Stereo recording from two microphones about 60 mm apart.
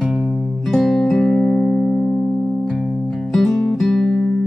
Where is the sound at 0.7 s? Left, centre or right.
Centre.